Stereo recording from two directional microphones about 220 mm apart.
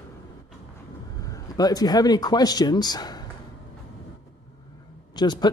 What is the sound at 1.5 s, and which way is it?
Speech, 15° left (ahead or behind).